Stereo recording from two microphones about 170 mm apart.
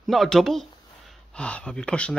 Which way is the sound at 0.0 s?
Centre (ahead or behind).